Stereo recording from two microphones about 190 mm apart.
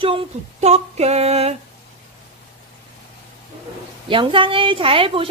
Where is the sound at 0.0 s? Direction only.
30° right (ahead or behind).